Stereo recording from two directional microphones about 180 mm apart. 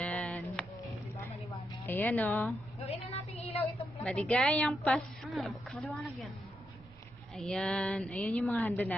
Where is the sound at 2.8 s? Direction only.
35° left (ahead or behind).